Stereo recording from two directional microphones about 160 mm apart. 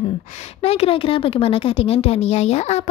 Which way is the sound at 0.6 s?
40° left (ahead or behind).